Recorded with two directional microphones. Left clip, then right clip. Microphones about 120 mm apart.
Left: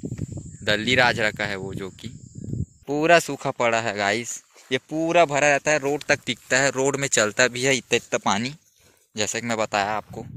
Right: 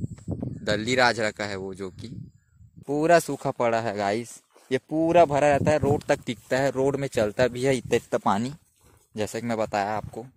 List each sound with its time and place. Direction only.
0.7 s speech: 5° right (ahead or behind)
3.3 s speech: 15° right (ahead or behind)
4.6 s speech: 30° right (ahead or behind)
6.8 s speech: 10° right (ahead or behind)
7.5 s speech: 30° right (ahead or behind); by 10.0 s 10° right (ahead or behind)